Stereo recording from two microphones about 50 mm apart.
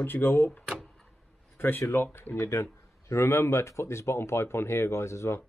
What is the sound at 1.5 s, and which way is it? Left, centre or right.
Speech, left.